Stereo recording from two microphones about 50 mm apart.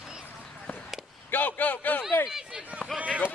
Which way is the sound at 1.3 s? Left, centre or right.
Left.